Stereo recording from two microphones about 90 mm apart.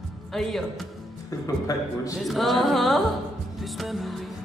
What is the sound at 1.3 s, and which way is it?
Speech, 40° left (ahead or behind).